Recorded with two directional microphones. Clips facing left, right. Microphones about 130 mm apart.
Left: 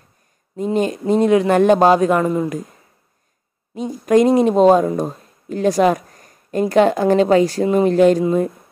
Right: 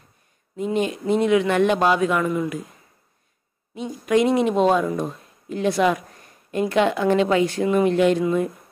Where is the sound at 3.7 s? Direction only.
40° left (ahead or behind).